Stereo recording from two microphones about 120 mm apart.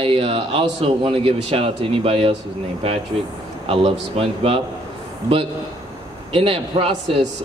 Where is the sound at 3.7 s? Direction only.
50° right (ahead or behind).